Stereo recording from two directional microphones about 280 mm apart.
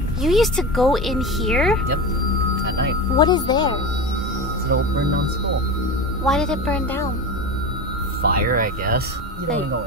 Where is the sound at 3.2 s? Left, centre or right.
Centre.